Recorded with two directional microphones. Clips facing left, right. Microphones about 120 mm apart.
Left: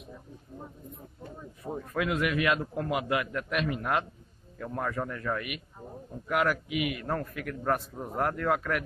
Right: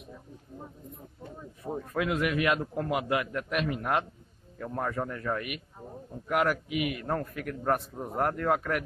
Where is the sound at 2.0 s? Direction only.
30° right (ahead or behind).